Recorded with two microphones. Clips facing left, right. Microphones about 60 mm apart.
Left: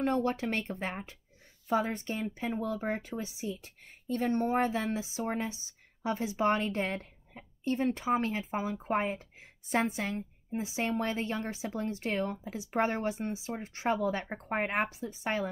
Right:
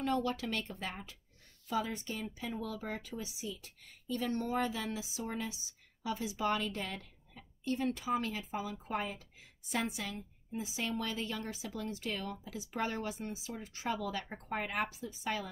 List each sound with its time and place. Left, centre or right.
0.0 s speech: left